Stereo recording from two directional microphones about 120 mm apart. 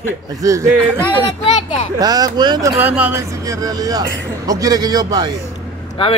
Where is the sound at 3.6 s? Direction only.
30° right (ahead or behind).